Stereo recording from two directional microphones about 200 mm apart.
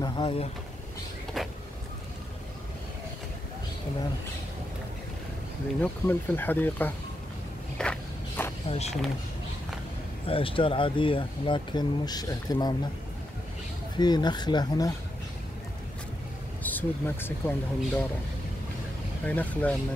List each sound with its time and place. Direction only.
0.0 s vehicle: 25° left (ahead or behind)
5.8 s speech: 10° left (ahead or behind)
7.7 s walk: 5° left (ahead or behind)
8.6 s speech: 30° left (ahead or behind)
10.2 s speech: 25° left (ahead or behind)
13.9 s speech: 20° left (ahead or behind)
16.6 s speech: 10° left (ahead or behind)
19.2 s speech: 5° left (ahead or behind)